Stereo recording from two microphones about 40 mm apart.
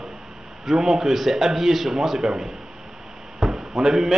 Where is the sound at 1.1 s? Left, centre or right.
Centre.